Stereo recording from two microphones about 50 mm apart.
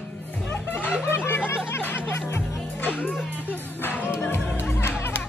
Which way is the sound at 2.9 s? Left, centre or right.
Left.